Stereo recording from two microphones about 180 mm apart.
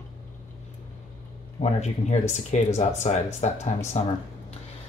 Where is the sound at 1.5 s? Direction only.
35° left (ahead or behind).